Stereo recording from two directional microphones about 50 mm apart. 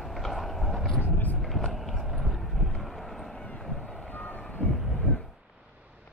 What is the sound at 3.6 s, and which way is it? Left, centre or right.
Vehicle, centre.